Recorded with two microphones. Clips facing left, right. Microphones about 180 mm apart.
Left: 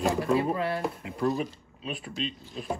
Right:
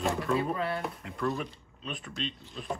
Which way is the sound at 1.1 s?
35° left (ahead or behind).